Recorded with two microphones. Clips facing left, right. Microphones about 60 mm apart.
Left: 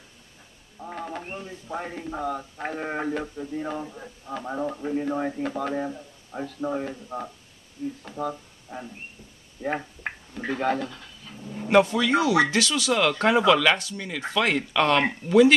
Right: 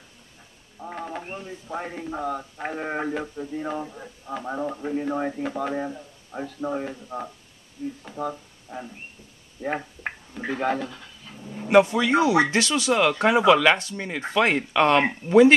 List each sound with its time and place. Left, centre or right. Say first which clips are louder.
0.7 s speech: right 1 dB; centre
9.6 s a sound: even; centre
11.8 s speech: right 2 dB; centre
13.1 s speech: right 2 dB; centre
13.7 s speech: right 2 dB; right